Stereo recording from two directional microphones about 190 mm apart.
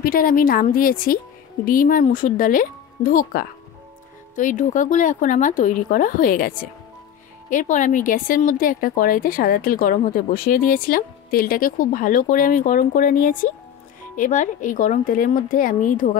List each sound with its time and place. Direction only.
0.0 s speech: 50° left (ahead or behind)